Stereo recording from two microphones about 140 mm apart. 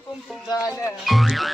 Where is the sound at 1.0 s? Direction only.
Centre (ahead or behind).